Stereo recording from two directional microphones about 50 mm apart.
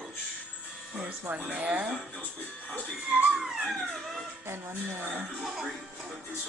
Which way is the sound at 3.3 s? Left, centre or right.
Centre.